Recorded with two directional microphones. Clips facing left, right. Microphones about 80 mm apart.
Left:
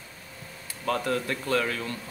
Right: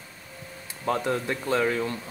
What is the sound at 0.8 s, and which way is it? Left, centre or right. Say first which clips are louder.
Speech: right 1 dB; right.